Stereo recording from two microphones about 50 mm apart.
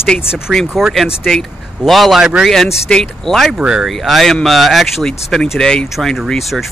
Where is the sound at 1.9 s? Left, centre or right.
Centre.